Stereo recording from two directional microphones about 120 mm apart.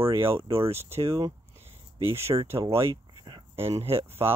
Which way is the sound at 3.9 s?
20° right (ahead or behind).